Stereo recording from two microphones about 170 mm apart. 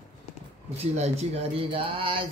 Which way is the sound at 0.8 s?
40° right (ahead or behind).